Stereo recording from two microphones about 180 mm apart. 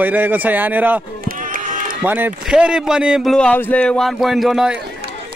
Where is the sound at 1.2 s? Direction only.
50° right (ahead or behind).